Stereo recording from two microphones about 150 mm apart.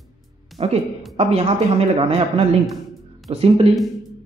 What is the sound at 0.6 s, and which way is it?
A man's voice, 40° right (ahead or behind).